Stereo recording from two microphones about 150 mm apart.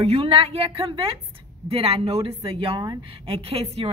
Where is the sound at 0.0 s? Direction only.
40° right (ahead or behind).